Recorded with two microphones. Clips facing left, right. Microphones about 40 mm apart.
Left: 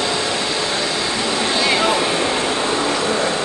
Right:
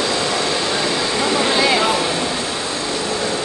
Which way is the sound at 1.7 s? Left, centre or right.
Centre.